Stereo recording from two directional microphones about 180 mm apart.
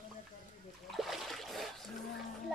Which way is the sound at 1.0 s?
Centre (ahead or behind).